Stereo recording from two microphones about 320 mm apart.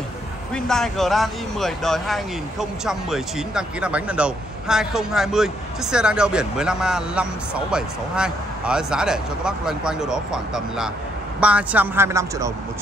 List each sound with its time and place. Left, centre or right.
0.7 s speech: centre